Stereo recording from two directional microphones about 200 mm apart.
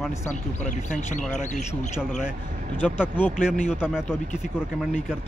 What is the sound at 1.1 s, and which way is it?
Speech, 35° left (ahead or behind).